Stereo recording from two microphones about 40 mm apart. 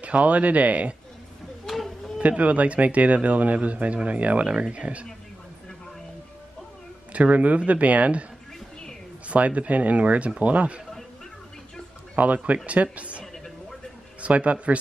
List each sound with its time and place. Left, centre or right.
0.0 s speech: right
2.1 s speech: right
4.5 s speech: right
7.1 s speech: right
9.3 s speech: right
12.2 s speech: right
13.2 s a sound: centre
14.2 s speech: right